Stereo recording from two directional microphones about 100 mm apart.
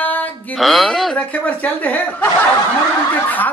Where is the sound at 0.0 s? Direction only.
15° left (ahead or behind).